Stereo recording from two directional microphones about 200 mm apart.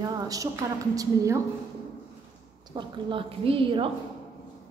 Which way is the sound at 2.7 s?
25° right (ahead or behind).